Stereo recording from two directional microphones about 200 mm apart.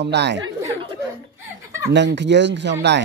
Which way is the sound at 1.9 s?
60° right (ahead or behind).